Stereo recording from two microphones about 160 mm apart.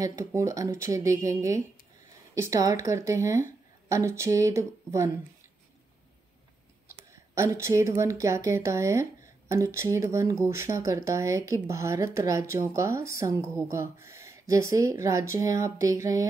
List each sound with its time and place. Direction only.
0.0 s speech: 20° right (ahead or behind)
7.3 s speech: 20° right (ahead or behind)